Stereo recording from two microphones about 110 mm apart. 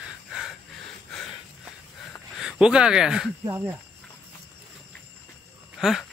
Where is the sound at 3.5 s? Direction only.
20° right (ahead or behind).